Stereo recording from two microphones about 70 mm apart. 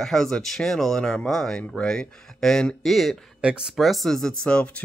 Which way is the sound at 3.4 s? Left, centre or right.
Centre.